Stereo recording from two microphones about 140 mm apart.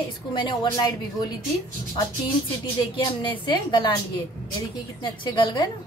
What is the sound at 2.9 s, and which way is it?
A woman's voice, 35° left (ahead or behind).